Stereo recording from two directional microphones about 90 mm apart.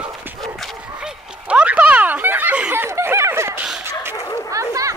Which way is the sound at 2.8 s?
30° right (ahead or behind).